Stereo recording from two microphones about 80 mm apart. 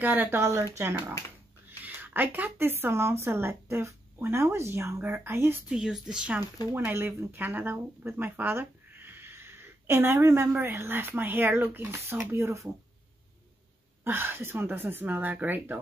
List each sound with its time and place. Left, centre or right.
0.0 s speech: right
1.7 s speech: right
5.7 s speech: centre
6.7 s speech: right
14.0 s speech: right